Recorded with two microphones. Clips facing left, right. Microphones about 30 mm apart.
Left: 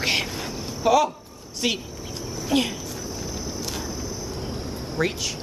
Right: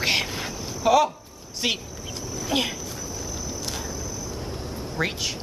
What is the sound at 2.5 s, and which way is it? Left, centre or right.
Speech, right.